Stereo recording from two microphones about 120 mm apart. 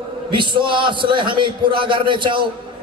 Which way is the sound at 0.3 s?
40° right (ahead or behind).